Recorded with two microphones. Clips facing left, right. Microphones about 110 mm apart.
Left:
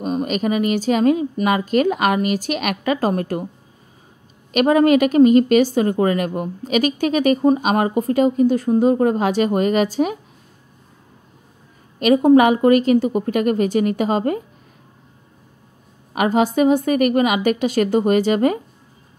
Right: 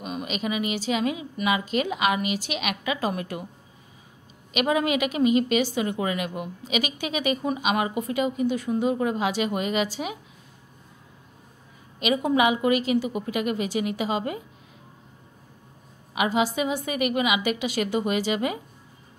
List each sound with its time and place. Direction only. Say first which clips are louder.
0.0 s a woman's voice: left 9 dB; 45° left (ahead or behind)
4.5 s a woman's voice: left 10 dB; 45° left (ahead or behind)
12.0 s a woman's voice: left 10 dB; 45° left (ahead or behind)
16.1 s a woman's voice: left 6 dB; 45° left (ahead or behind)